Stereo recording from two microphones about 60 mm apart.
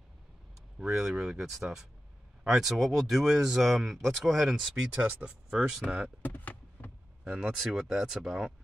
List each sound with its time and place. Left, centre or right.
0.7 s speech: centre
6.2 s a sound: left
7.4 s speech: centre